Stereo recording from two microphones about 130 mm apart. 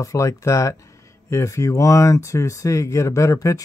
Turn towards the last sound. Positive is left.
turn(degrees=25)  # may be behind; listen again after turning